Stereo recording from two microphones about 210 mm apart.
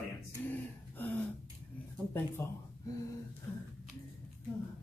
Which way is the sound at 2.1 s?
10° left (ahead or behind).